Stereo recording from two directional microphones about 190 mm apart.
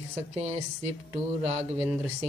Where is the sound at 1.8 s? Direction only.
10° right (ahead or behind).